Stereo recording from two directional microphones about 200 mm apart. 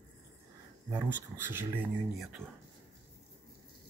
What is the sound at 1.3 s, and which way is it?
Speech, 10° right (ahead or behind).